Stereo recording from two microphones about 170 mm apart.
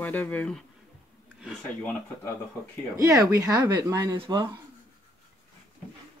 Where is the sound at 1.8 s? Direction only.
15° left (ahead or behind).